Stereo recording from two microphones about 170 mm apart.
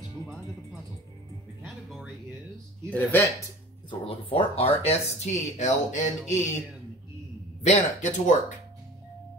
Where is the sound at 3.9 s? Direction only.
30° left (ahead or behind).